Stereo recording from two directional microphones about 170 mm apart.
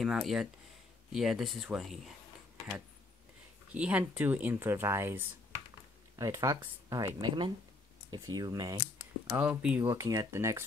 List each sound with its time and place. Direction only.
0.0 s speech: centre (ahead or behind)
3.7 s speech: 10° right (ahead or behind); by 8.8 s 25° right (ahead or behind)
9.3 s speech: 5° right (ahead or behind)
9.8 s speech: 20° right (ahead or behind)